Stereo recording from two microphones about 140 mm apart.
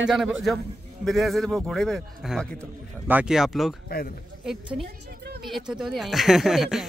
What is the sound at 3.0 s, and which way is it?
Speech, 10° right (ahead or behind).